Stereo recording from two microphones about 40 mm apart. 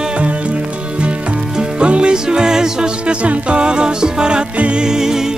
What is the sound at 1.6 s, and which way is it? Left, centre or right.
Music, right.